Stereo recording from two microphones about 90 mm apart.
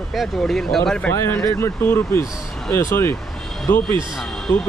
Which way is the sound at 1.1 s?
25° left (ahead or behind).